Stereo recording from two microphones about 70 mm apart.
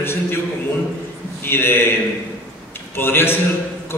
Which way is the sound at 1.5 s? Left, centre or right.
Left.